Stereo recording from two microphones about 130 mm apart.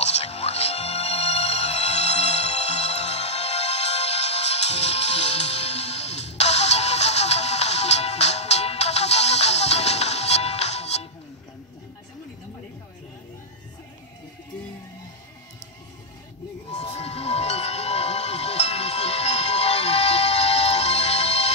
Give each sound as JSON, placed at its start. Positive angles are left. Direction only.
{"t": 0.0, "sound": "music", "side_deg": 55}
{"t": 16.7, "sound": "music", "side_deg": 50}